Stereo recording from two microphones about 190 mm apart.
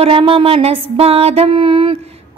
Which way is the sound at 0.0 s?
30° right (ahead or behind).